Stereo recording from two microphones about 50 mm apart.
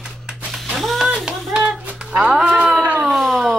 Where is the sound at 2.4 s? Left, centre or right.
Right.